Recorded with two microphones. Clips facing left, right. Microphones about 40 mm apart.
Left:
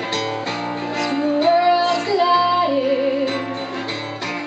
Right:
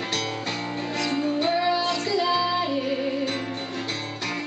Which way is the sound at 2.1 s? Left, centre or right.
Centre.